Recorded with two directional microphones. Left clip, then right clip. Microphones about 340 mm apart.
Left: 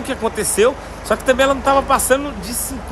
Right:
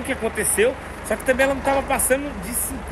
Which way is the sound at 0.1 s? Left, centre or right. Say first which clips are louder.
Left 3 dB; centre.